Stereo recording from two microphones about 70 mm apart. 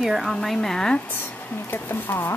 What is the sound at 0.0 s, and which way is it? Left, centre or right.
Speech, centre.